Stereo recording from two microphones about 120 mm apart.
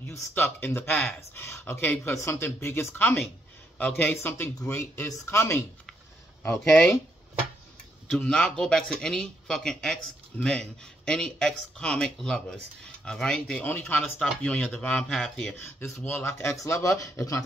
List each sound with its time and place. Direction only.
0.1 s speech: 20° left (ahead or behind)
6.7 s speech: 5° left (ahead or behind)
8.1 s speech: 5° left (ahead or behind)
15.6 s speech: 20° left (ahead or behind)